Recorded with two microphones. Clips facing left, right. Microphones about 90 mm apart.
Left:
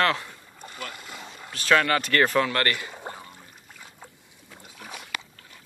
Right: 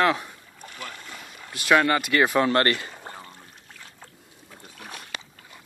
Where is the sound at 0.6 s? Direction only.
5° left (ahead or behind).